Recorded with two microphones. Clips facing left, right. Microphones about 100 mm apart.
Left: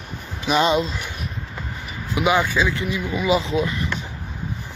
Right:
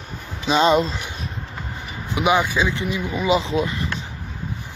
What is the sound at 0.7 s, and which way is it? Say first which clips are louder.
Speech: right 3 dB; 40° right (ahead or behind).